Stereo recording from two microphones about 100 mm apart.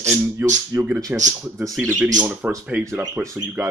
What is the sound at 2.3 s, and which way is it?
Speech, 25° right (ahead or behind).